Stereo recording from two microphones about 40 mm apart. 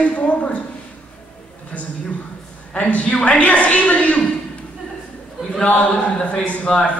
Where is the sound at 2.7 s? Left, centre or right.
Left.